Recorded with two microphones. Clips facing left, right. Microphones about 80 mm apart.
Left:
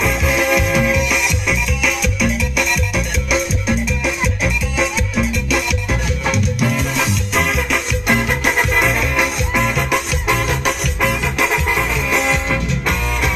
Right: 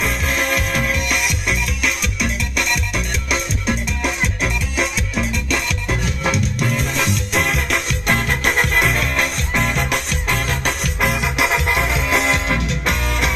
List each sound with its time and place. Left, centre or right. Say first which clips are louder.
0.0 s music: left 4 dB; centre
7.0 s music: left 1 dB; centre
11.0 s music: right 1 dB; centre
11.7 s music: left 1 dB; centre